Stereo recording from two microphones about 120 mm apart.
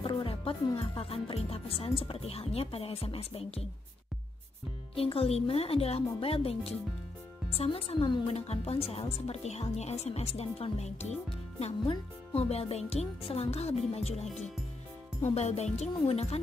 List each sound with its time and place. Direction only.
0.0 s speech: 50° left (ahead or behind)
4.9 s speech: 55° left (ahead or behind)
12.4 s speech: 55° left (ahead or behind)